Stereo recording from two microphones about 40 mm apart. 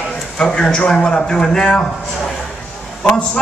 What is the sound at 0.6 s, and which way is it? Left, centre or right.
A man's voice, left.